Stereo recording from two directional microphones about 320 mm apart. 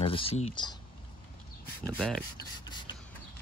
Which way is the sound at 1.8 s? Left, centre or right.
Centre.